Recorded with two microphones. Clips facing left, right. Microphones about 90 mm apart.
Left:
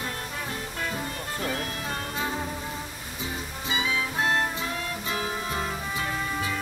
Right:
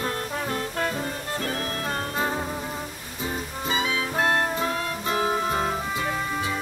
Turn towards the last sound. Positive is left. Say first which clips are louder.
# right 6 dB
turn(degrees=-35)  # may be behind; listen again after turning